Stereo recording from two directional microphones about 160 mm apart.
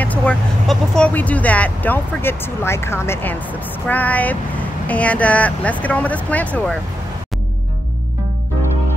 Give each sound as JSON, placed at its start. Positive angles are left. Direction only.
{"t": 0.0, "sound": "speech", "side_deg": 10}